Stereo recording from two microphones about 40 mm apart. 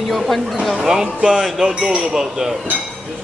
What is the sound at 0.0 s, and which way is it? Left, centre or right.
Speech, centre.